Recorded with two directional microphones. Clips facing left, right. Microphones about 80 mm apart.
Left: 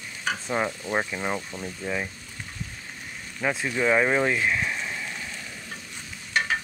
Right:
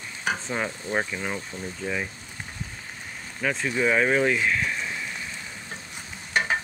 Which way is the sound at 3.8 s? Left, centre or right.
Centre.